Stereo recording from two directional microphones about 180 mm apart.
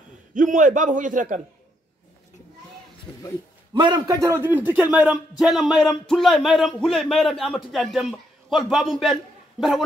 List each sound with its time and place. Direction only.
0.3 s a man's voice: 45° right (ahead or behind)
3.1 s a sound: 5° left (ahead or behind)
3.7 s a man's voice: 25° right (ahead or behind); by 9.8 s centre (ahead or behind)